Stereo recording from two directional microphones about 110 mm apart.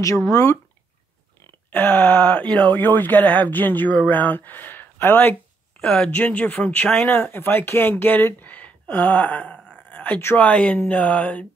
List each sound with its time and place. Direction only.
0.0 s speech: 30° left (ahead or behind)
1.7 s speech: 20° left (ahead or behind)